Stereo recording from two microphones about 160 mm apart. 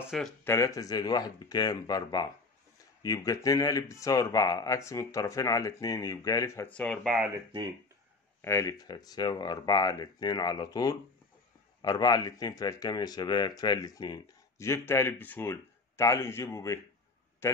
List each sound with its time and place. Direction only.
0.1 s speech: centre (ahead or behind)
0.5 s speech: 20° left (ahead or behind)
6.7 s speech: 5° left (ahead or behind)
8.4 s speech: 15° left (ahead or behind)
17.4 s a sound: 15° left (ahead or behind)